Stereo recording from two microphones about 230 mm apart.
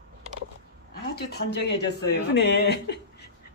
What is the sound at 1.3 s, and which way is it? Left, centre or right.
Speech, left.